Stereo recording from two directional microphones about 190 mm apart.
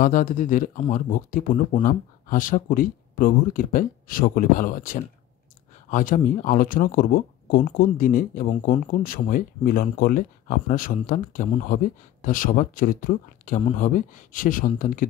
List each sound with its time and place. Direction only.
0.0 s speech: 45° left (ahead or behind)